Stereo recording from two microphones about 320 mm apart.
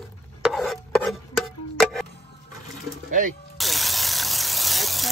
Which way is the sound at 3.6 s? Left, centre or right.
Centre.